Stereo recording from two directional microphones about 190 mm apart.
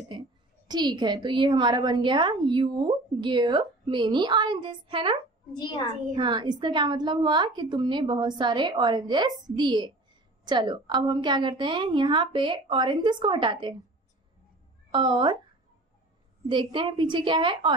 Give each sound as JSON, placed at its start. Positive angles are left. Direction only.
{"t": 0.7, "sound": "a woman's voice", "side_deg": -20}
{"t": 5.5, "sound": "a child's voice", "side_deg": 25}
{"t": 6.1, "sound": "a woman's voice", "side_deg": -25}
{"t": 14.9, "sound": "speech", "side_deg": -25}
{"t": 16.4, "sound": "a woman's voice", "side_deg": -25}